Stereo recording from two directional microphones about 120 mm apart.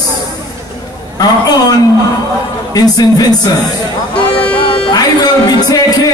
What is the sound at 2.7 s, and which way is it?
Speech, 30° left (ahead or behind).